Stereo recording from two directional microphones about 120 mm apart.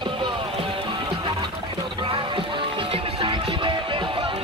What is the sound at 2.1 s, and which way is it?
Music, 45° right (ahead or behind).